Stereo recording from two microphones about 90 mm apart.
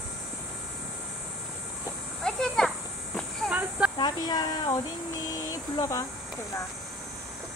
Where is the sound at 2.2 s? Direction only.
5° left (ahead or behind).